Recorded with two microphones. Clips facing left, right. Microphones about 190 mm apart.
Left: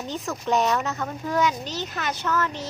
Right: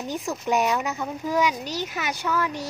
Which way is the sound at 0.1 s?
10° right (ahead or behind).